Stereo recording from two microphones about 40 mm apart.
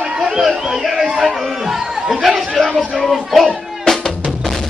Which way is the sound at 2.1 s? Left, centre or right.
Centre.